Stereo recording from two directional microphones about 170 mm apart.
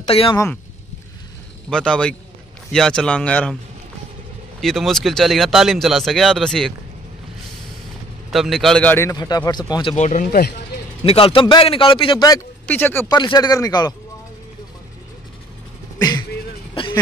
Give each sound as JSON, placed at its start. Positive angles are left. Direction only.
{"t": 0.0, "sound": "speech", "side_deg": 35}
{"t": 1.7, "sound": "speech", "side_deg": 5}
{"t": 4.6, "sound": "speech", "side_deg": 0}
{"t": 8.3, "sound": "a man's voice", "side_deg": 0}
{"t": 9.9, "sound": "speech", "side_deg": 45}
{"t": 11.1, "sound": "speech", "side_deg": 30}
{"t": 12.6, "sound": "speech", "side_deg": 10}
{"t": 13.1, "sound": "a man's voice", "side_deg": 25}
{"t": 16.0, "sound": "speech", "side_deg": 25}